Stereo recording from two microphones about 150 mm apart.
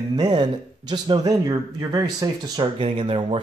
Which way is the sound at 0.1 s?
25° right (ahead or behind).